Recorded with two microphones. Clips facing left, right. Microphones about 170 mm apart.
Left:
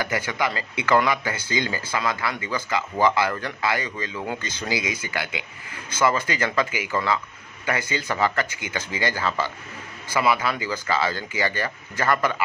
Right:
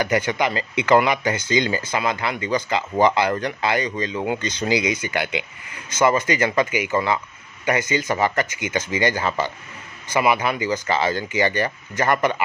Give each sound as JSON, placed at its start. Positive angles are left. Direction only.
{"t": 0.0, "sound": "speech", "side_deg": -20}